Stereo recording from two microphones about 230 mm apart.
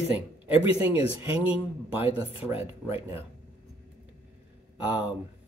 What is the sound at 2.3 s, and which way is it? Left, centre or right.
Speech, left.